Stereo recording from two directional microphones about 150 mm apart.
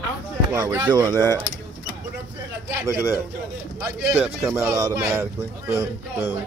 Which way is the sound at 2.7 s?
15° right (ahead or behind).